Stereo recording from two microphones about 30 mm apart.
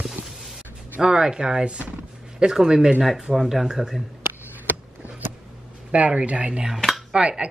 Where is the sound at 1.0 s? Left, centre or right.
Right.